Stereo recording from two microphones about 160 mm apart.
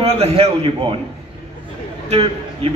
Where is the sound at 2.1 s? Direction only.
40° right (ahead or behind).